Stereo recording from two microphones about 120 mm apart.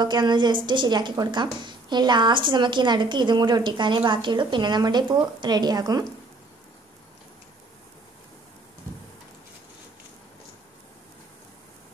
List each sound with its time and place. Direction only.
0.0 s a woman's voice: 40° right (ahead or behind)